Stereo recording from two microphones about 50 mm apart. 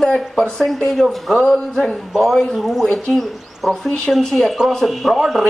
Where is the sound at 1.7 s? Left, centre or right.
Centre.